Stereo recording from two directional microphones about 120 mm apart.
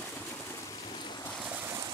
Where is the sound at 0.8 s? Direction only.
40° left (ahead or behind).